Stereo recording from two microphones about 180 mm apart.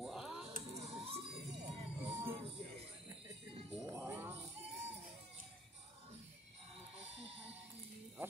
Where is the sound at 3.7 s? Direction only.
10° right (ahead or behind).